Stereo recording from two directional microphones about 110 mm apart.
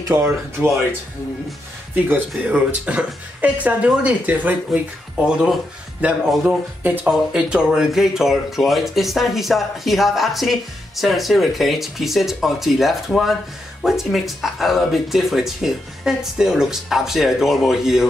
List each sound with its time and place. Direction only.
0.1 s speech: 25° right (ahead or behind)
2.4 s speech: 10° right (ahead or behind)